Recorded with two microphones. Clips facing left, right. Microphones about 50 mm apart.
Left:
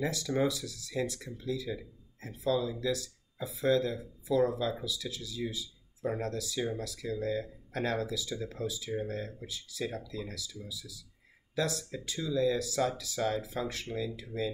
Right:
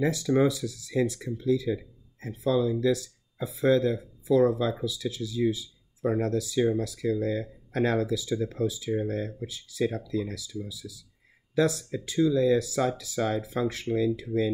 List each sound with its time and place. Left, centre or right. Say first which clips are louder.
0.5 s speech: right 6 dB; right
5.5 s a sound: right 10 dB; right
6.3 s speech: right 9 dB; right
7.0 s speech: right 6 dB; right